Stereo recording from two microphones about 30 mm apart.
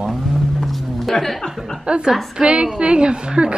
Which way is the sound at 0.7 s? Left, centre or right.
Centre.